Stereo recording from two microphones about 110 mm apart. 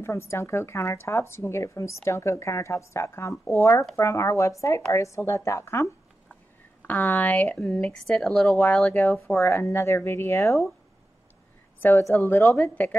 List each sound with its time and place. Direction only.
0.0 s a woman's voice: 25° left (ahead or behind)
6.9 s a woman's voice: 15° left (ahead or behind)
11.8 s a woman's voice: 25° left (ahead or behind)